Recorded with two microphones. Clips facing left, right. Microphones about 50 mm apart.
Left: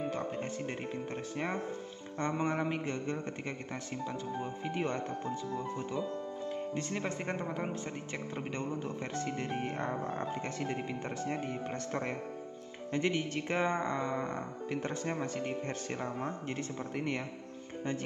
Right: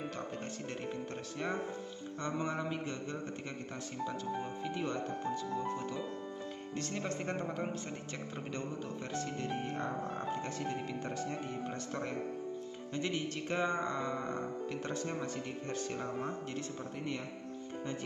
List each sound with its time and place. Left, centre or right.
0.1 s speech: left
2.1 s speech: left
4.6 s speech: left
6.7 s speech: left
9.2 s speech: left
15.1 s speech: left
16.9 s speech: left